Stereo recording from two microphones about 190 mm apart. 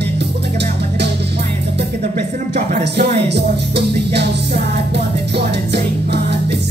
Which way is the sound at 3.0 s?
60° right (ahead or behind).